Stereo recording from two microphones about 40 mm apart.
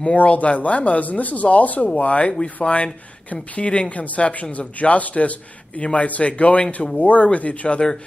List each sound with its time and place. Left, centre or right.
0.1 s speech: left
4.0 s speech: left